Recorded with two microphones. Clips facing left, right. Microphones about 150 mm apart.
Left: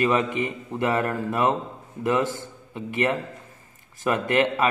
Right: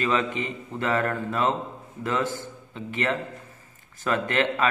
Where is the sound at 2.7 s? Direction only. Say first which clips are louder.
Left 3 dB; 15° left (ahead or behind).